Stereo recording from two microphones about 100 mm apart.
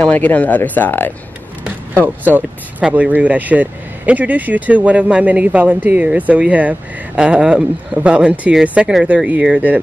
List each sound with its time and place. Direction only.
0.0 s speech: 15° left (ahead or behind)
2.0 s speech: 15° right (ahead or behind)